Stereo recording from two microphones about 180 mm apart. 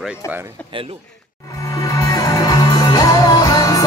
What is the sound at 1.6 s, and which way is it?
Music, 20° left (ahead or behind).